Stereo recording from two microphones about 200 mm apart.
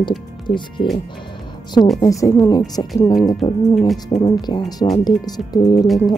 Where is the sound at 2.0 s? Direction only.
15° left (ahead or behind).